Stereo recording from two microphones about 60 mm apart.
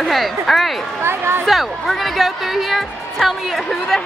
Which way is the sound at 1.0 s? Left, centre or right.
Right.